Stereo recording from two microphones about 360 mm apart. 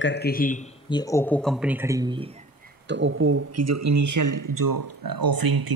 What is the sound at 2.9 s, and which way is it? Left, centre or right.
Speech, right.